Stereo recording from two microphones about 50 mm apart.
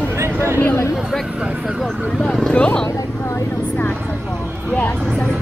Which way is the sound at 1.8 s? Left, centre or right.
Centre.